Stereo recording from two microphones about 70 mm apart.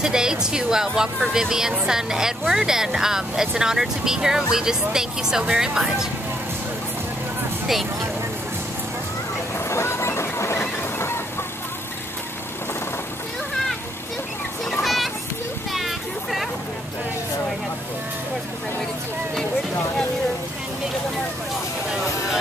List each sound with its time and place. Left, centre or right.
0.0 s speech: centre
9.7 s train: left
14.7 s children playing: centre
15.7 s a sound: centre